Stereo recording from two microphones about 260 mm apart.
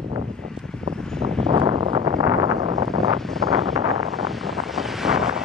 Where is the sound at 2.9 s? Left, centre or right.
Centre.